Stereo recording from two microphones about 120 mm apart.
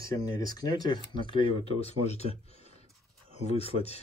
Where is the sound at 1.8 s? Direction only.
60° left (ahead or behind).